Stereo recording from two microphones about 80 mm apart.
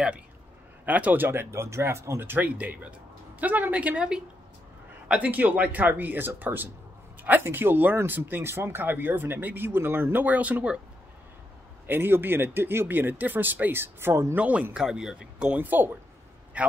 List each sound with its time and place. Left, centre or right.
0.8 s speech: centre
11.8 s speech: right
14.3 s a man's voice: centre